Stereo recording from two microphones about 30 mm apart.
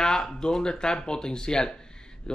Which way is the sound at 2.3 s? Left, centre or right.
Left.